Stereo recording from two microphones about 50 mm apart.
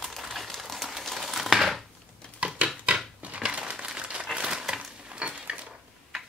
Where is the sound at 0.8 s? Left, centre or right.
Centre.